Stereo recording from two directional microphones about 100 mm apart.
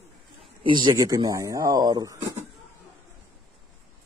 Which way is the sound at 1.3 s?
35° right (ahead or behind).